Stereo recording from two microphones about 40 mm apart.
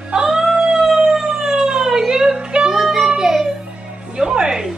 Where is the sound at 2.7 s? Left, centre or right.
Centre.